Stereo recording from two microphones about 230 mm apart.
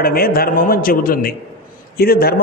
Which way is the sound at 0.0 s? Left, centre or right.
Left.